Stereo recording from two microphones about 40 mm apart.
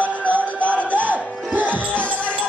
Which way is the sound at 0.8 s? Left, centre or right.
Right.